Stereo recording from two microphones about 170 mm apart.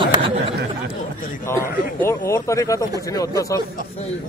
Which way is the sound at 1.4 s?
15° left (ahead or behind).